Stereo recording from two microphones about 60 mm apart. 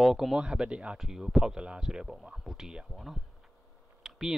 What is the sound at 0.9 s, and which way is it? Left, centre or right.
Speech, centre.